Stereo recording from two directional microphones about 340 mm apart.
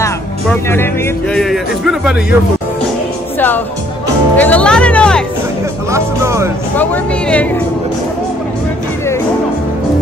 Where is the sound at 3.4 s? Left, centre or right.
Centre.